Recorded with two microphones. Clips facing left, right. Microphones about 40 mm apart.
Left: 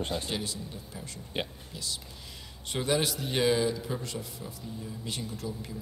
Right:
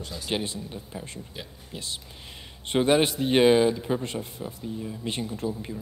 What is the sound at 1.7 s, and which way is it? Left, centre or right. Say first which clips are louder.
A man's voice: right 2 dB; right.